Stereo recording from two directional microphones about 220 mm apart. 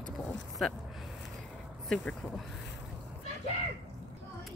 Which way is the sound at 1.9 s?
5° left (ahead or behind).